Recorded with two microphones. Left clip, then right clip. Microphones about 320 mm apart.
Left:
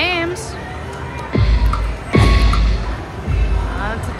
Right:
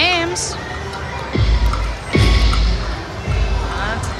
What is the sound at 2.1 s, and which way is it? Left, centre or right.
Music, centre.